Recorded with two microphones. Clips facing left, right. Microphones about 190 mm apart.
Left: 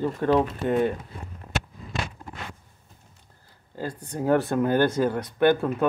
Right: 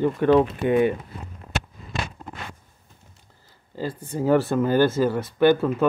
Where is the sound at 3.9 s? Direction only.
Centre (ahead or behind).